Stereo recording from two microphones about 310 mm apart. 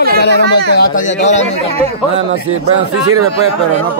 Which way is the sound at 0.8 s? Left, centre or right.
Left.